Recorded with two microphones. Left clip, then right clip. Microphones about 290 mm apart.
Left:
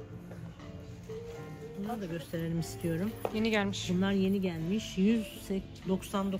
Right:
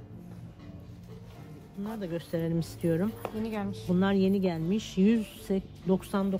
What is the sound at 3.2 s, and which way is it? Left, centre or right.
Speech, centre.